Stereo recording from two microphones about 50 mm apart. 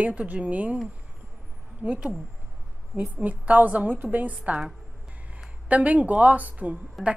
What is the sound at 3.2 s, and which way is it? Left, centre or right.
A woman's voice, right.